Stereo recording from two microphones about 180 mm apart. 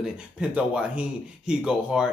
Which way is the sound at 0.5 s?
5° right (ahead or behind).